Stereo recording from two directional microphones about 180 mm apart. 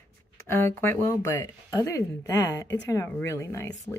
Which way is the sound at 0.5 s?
15° left (ahead or behind).